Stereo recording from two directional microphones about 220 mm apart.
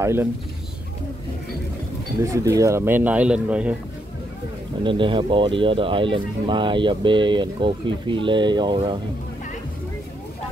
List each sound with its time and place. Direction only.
0.0 s speech: 10° right (ahead or behind)
2.2 s speech: 15° right (ahead or behind)
4.8 s speech: 20° right (ahead or behind)